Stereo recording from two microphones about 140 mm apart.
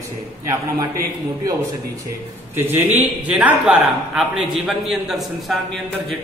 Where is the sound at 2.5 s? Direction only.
15° right (ahead or behind).